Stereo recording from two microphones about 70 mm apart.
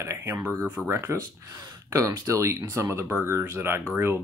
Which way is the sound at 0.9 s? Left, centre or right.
Right.